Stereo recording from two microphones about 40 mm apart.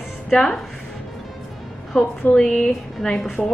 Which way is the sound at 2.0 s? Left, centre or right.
Left.